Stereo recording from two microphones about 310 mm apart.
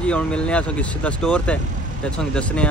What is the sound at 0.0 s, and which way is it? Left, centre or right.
Speech, centre.